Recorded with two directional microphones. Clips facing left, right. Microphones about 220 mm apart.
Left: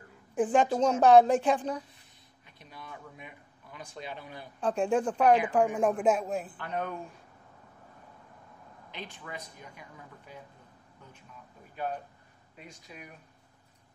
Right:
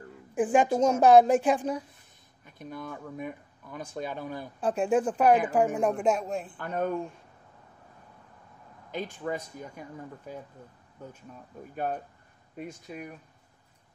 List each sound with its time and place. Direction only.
0.3 s a woman's voice: 10° right (ahead or behind)
2.4 s speech: 50° right (ahead or behind)
4.6 s a woman's voice: 5° right (ahead or behind)
6.6 s speech: 45° right (ahead or behind)
8.9 s speech: 45° right (ahead or behind)
11.7 s speech: 50° right (ahead or behind)